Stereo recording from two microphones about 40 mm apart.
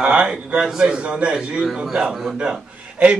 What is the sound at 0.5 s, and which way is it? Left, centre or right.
Speech, centre.